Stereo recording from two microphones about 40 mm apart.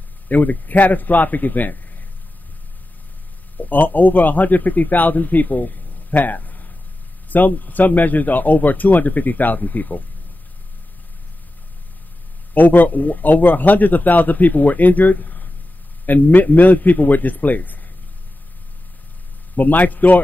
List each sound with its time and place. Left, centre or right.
0.3 s speech: left
3.5 s a man's voice: left
12.5 s speech: left
19.5 s speech: left